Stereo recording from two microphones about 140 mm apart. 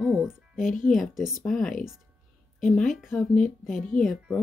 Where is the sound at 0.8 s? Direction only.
Centre (ahead or behind).